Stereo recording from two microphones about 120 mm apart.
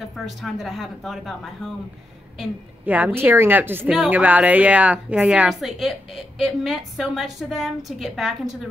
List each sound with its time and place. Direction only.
0.4 s a woman's voice: centre (ahead or behind)
2.8 s a woman's voice: 15° right (ahead or behind)